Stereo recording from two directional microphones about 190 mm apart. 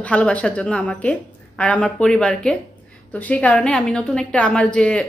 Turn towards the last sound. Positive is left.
turn(degrees=5)  # may be behind; listen again after turning